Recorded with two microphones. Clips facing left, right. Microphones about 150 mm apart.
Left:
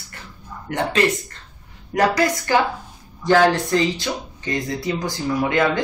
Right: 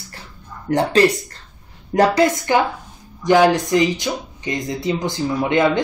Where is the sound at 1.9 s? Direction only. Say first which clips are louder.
Right 4 dB; 25° right (ahead or behind).